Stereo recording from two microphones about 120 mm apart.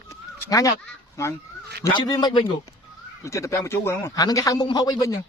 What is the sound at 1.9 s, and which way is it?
Speech, 35° left (ahead or behind).